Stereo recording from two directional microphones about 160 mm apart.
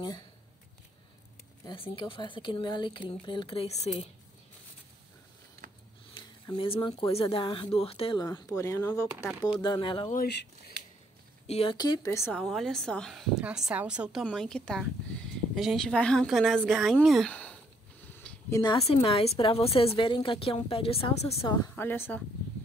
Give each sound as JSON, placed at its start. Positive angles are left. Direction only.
{"t": 1.6, "sound": "speech", "side_deg": 30}
{"t": 6.1, "sound": "speech", "side_deg": 30}
{"t": 8.4, "sound": "speech", "side_deg": 20}
{"t": 9.5, "sound": "speech", "side_deg": 30}
{"t": 10.1, "sound": "speech", "side_deg": 90}
{"t": 11.4, "sound": "speech", "side_deg": 40}
{"t": 11.7, "sound": "speech", "side_deg": 25}
{"t": 12.4, "sound": "a woman's voice", "side_deg": 0}
{"t": 18.1, "sound": "a sound", "side_deg": 15}
{"t": 18.6, "sound": "speech", "side_deg": 35}
{"t": 21.4, "sound": "speech", "side_deg": 15}